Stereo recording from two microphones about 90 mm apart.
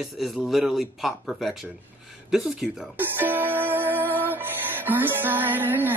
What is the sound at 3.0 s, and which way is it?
Music, 20° right (ahead or behind).